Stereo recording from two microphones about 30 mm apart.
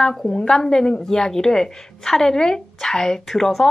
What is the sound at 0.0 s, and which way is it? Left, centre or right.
A woman's voice, centre.